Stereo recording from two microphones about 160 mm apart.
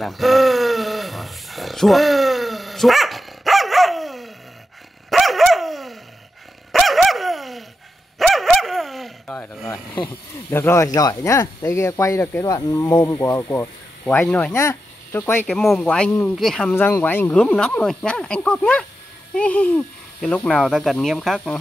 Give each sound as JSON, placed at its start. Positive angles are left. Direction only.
{"t": 0.0, "sound": "a sound", "side_deg": 0}
{"t": 5.1, "sound": "dog", "side_deg": 0}
{"t": 10.5, "sound": "speech", "side_deg": 15}
{"t": 15.5, "sound": "speech", "side_deg": 0}
{"t": 16.1, "sound": "speech", "side_deg": 15}
{"t": 16.3, "sound": "speech", "side_deg": 5}